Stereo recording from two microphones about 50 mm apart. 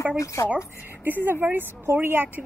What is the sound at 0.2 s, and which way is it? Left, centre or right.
Speech, left.